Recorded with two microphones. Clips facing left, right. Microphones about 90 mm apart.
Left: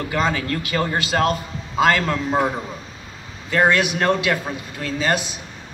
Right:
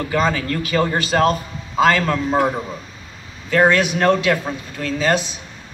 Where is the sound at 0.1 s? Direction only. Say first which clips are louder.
Right 2 dB; 20° left (ahead or behind).